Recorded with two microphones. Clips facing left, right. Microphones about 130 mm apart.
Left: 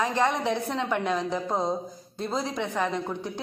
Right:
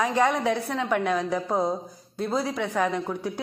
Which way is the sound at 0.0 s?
10° right (ahead or behind).